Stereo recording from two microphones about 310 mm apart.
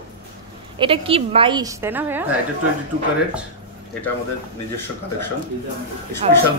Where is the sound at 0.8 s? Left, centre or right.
Centre.